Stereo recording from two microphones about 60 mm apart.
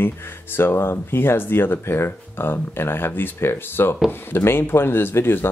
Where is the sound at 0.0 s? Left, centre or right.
Left.